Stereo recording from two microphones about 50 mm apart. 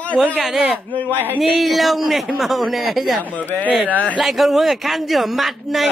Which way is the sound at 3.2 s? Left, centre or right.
Left.